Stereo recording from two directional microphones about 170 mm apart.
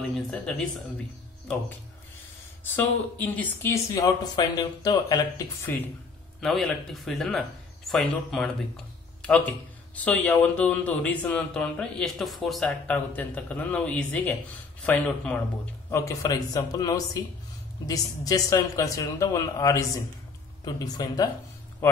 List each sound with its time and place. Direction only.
0.1 s speech: centre (ahead or behind)
2.6 s speech: 10° left (ahead or behind)
3.9 s a woman's voice: 20° left (ahead or behind)
6.4 s speech: centre (ahead or behind)
9.9 s speech: 10° left (ahead or behind)
15.9 s a woman's voice: 20° left (ahead or behind)